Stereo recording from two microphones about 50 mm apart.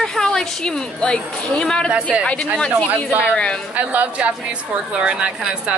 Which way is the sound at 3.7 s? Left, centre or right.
Right.